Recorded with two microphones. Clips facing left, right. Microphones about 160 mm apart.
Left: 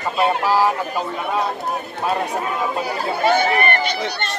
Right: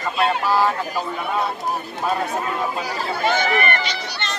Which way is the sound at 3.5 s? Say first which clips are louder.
Left 2 dB; 45° left (ahead or behind).